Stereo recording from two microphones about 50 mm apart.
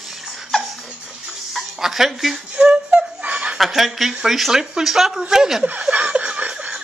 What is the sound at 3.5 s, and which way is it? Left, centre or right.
Speech, centre.